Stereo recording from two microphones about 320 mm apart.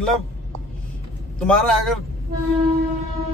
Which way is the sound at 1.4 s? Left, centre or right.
Centre.